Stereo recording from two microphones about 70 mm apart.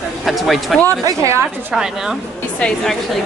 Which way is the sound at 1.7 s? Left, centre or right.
Centre.